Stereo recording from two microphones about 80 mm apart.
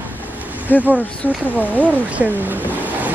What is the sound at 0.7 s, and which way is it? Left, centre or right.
Speech, left.